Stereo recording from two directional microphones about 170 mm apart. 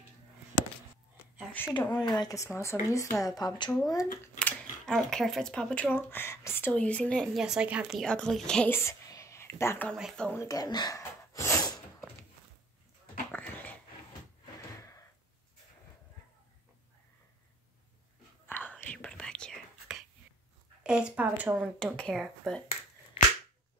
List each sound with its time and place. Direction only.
1.9 s speech: 25° left (ahead or behind)
4.4 s speech: 5° left (ahead or behind)
7.3 s a woman's voice: 5° right (ahead or behind); by 9.9 s 10° left (ahead or behind)
9.9 s speech: centre (ahead or behind)
10.4 s gasp: 20° left (ahead or behind)
13.3 s dog: 10° left (ahead or behind)
14.4 s a sound: 20° left (ahead or behind)
18.5 s whispering: 10° left (ahead or behind)
20.8 s a sound: 5° right (ahead or behind)
21.5 s speech: 5° left (ahead or behind)